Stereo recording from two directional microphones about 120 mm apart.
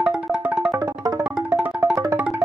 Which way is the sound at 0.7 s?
30° right (ahead or behind).